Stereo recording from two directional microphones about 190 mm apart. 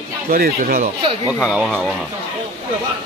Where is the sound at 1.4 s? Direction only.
Centre (ahead or behind).